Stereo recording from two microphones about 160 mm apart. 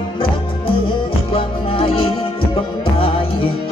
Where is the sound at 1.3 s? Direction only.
35° left (ahead or behind).